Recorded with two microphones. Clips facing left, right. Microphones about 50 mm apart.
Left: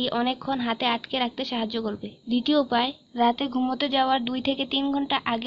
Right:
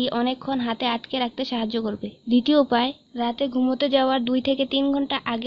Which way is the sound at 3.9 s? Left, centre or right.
Centre.